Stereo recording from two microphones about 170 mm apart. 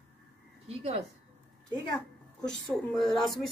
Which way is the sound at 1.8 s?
25° left (ahead or behind).